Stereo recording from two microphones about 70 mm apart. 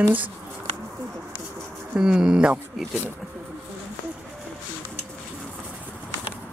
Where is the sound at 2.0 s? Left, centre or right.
Centre.